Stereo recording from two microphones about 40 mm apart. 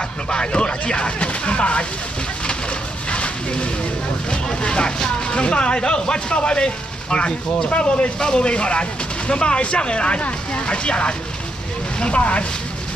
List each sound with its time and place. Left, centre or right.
0.3 s speech: left
3.1 s a sound: left
4.3 s speech: left